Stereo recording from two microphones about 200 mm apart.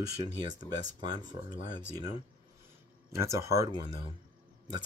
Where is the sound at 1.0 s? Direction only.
20° right (ahead or behind).